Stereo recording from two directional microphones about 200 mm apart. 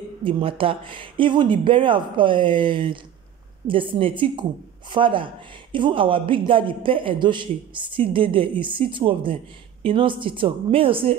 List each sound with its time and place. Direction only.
0.2 s speech: 25° right (ahead or behind)